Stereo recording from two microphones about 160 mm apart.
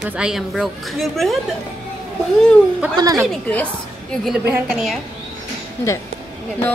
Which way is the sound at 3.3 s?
10° left (ahead or behind).